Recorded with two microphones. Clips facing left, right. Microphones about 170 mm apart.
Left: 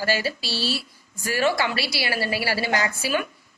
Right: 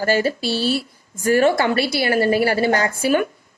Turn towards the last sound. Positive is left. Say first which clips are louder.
# right 6 dB
turn(degrees=-50)  # may be behind; listen again after turning